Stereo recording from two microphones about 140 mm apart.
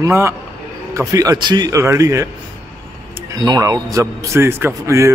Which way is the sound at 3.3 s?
25° right (ahead or behind).